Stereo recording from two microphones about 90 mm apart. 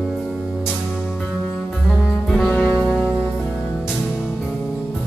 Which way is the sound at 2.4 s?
15° left (ahead or behind).